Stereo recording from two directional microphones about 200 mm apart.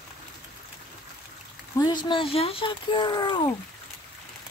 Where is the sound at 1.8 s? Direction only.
20° left (ahead or behind).